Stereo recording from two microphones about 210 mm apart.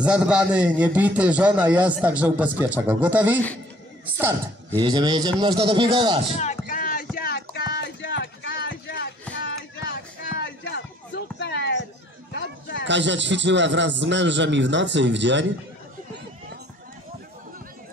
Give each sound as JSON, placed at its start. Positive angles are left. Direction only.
{"t": 0.0, "sound": "a man's voice", "side_deg": -5}
{"t": 4.7, "sound": "speech", "side_deg": -20}
{"t": 6.3, "sound": "a sound", "side_deg": 35}
{"t": 12.8, "sound": "a man's voice", "side_deg": -60}